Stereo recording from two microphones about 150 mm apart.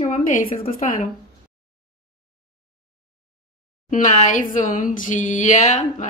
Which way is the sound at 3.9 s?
55° left (ahead or behind).